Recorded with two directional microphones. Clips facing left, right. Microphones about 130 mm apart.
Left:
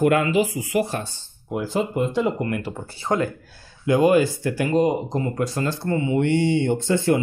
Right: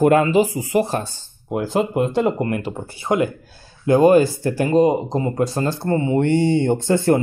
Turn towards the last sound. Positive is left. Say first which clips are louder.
# right 3 dB
turn(degrees=-45)  # may be behind; listen again after turning